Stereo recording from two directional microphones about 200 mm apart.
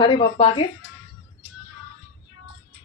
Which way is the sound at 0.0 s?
25° left (ahead or behind).